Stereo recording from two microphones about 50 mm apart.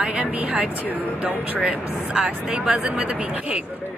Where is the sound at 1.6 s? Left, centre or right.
Right.